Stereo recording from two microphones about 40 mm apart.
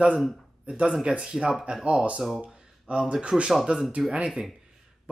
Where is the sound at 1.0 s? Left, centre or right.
Right.